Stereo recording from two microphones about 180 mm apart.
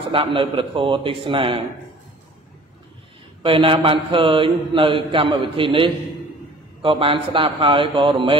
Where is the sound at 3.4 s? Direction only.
30° right (ahead or behind).